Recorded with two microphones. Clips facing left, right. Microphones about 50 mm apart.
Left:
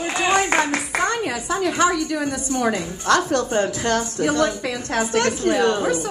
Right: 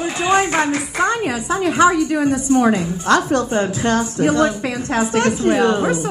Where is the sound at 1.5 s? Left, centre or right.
Right.